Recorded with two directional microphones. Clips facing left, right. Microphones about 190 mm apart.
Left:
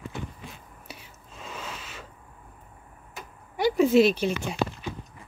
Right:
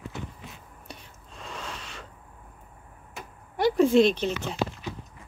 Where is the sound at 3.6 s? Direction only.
Centre (ahead or behind).